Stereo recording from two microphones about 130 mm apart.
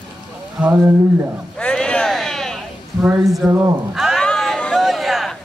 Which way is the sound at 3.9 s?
5° right (ahead or behind).